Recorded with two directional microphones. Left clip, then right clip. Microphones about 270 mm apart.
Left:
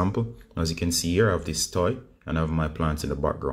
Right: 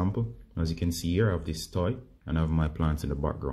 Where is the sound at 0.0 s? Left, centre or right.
Centre.